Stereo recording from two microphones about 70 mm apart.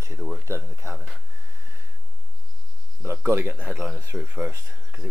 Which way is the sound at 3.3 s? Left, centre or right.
Right.